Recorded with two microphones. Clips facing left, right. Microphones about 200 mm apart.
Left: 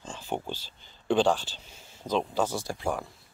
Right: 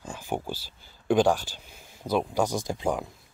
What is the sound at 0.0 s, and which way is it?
Speech, 10° right (ahead or behind).